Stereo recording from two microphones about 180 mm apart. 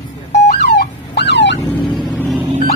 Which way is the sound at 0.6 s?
65° left (ahead or behind).